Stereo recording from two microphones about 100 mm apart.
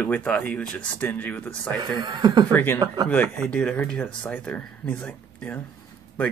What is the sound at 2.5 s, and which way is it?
Speech, 20° left (ahead or behind).